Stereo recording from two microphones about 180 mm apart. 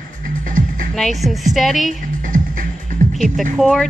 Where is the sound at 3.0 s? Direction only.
45° right (ahead or behind).